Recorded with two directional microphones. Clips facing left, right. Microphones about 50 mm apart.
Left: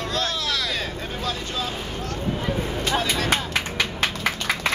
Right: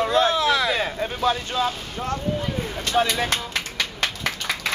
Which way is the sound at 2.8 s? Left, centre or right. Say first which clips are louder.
Right 3 dB; centre.